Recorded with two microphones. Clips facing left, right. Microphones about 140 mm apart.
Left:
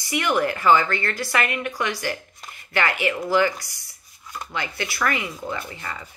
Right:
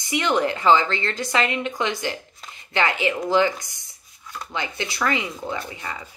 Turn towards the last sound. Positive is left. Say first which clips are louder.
# right 1 dB
turn(degrees=-15)  # may be behind; listen again after turning